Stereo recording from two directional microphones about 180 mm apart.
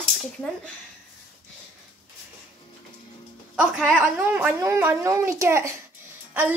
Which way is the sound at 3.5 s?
5° right (ahead or behind).